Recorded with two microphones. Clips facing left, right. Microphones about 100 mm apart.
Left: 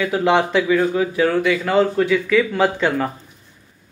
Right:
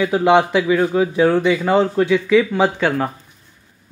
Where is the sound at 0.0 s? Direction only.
20° right (ahead or behind).